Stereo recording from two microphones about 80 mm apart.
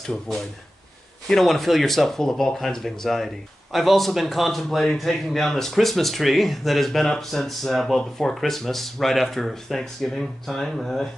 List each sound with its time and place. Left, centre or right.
1.2 s a man's voice: centre